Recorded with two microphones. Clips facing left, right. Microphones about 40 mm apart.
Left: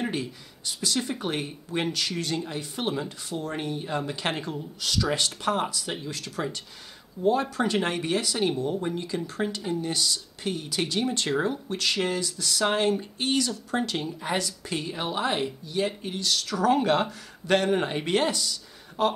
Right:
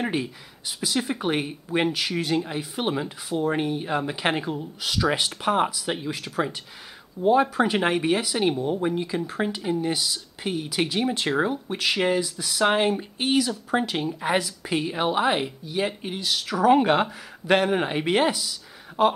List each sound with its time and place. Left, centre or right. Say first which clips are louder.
0.0 s speech: right 3 dB; centre